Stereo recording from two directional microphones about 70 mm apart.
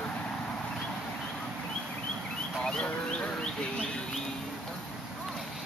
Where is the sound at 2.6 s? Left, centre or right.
Centre.